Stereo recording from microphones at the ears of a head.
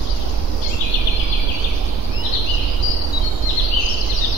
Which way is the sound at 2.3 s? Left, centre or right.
Left.